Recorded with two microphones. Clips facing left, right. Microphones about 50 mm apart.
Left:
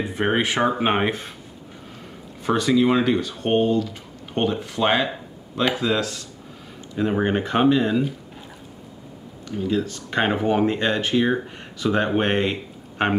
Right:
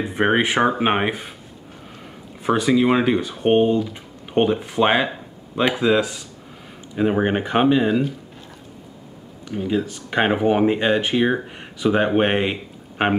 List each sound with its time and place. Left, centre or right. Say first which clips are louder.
0.0 s speech: right 3 dB; right
2.4 s speech: right 1 dB; centre
9.5 s speech: right 1 dB; centre